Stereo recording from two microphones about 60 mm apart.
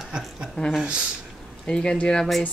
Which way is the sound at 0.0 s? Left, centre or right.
Centre.